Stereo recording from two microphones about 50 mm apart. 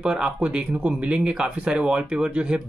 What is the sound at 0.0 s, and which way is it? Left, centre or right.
Speech, centre.